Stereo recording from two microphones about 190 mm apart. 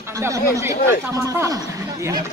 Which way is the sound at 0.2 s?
15° right (ahead or behind).